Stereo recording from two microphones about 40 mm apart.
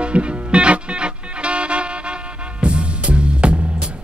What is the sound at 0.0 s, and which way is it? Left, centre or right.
Music, right.